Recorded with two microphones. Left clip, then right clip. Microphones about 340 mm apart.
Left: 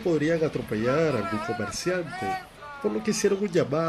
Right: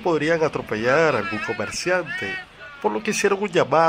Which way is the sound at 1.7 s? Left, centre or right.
Centre.